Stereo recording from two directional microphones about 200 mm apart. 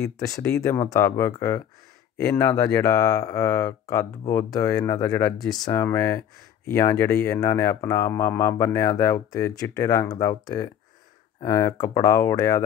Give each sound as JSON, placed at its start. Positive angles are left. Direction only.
{"t": 0.0, "sound": "speech", "side_deg": 15}